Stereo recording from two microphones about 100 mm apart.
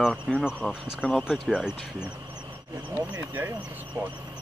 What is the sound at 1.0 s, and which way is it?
Speech, 15° left (ahead or behind).